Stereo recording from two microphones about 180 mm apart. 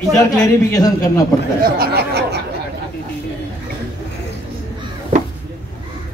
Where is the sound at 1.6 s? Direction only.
60° right (ahead or behind).